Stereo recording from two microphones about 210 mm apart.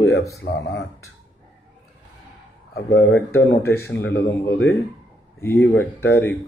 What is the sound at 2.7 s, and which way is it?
Speech, 55° left (ahead or behind).